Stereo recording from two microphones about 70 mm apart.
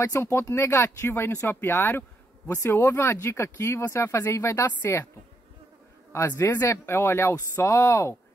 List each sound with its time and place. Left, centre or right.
0.1 s speech: left
6.1 s speech: left